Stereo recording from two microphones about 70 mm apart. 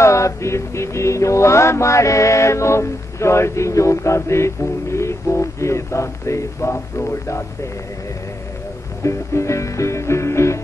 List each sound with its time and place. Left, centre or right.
0.0 s mantra: left
9.0 s music: left